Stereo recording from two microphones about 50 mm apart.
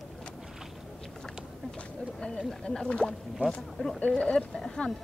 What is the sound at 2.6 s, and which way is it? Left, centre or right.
Speech, centre.